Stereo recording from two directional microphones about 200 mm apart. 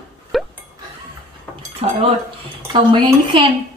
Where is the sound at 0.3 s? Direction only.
Centre (ahead or behind).